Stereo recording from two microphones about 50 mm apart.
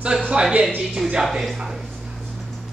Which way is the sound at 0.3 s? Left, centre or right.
Centre.